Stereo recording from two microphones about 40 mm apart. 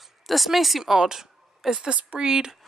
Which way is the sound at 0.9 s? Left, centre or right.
Centre.